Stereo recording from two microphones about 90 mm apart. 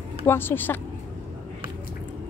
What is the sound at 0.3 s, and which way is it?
Speech, 25° left (ahead or behind).